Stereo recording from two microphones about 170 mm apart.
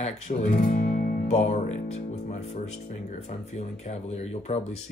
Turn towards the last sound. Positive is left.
turn(degrees=40)  # may be behind; listen again after turning